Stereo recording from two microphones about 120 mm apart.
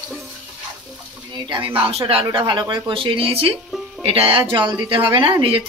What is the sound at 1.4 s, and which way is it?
Speech, 40° right (ahead or behind).